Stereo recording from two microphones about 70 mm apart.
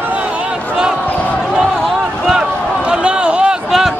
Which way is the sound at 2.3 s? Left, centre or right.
Centre.